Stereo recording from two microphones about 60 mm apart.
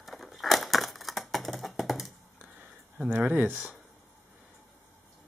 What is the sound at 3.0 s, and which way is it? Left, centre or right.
Speech, right.